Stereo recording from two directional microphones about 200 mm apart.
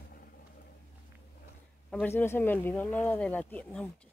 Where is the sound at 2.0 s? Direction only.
10° left (ahead or behind).